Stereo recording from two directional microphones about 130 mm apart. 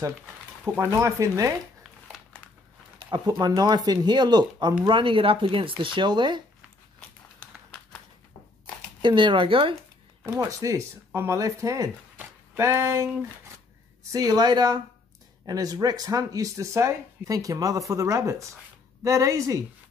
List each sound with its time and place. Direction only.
0.7 s speech: 20° right (ahead or behind)
3.1 s speech: 30° right (ahead or behind)
9.0 s speech: 40° right (ahead or behind)
10.2 s speech: 20° right (ahead or behind)
12.2 s a sound: 20° right (ahead or behind)
14.1 s speech: 30° right (ahead or behind)